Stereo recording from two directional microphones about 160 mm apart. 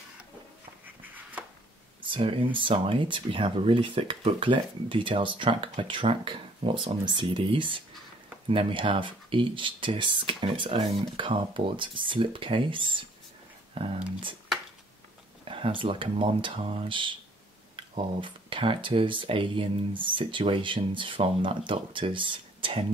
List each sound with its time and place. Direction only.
1.0 s a sound: 10° right (ahead or behind)
2.0 s speech: 30° right (ahead or behind)
15.4 s speech: 35° right (ahead or behind)